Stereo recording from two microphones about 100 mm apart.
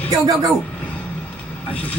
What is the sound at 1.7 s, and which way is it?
Speech, 15° left (ahead or behind).